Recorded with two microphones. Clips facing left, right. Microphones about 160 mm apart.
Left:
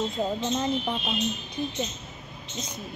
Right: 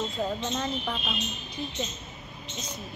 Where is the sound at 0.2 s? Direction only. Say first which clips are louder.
Left 2 dB; 20° left (ahead or behind).